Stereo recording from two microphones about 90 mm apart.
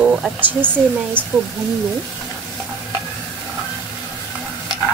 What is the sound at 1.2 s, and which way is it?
Speech, 20° right (ahead or behind).